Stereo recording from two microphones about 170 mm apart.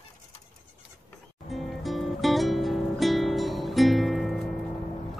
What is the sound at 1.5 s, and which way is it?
Music, centre (ahead or behind).